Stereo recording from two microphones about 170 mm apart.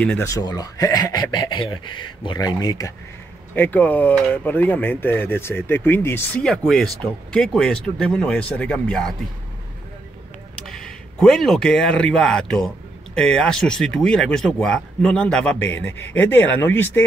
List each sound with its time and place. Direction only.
0.2 s speech: 20° left (ahead or behind)
3.5 s speech: 10° left (ahead or behind)
10.7 s speech: 5° left (ahead or behind)